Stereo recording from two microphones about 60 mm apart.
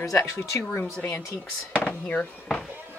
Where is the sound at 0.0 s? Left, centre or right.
Left.